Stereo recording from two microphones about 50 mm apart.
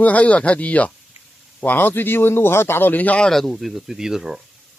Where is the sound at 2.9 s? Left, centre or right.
Left.